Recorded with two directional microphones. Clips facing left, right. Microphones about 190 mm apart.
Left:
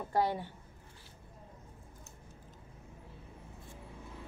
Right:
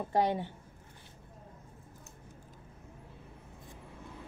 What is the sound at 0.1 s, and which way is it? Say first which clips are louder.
Speech: right 2 dB; 20° right (ahead or behind).